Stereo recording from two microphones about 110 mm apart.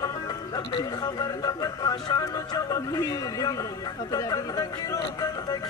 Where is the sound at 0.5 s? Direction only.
40° left (ahead or behind).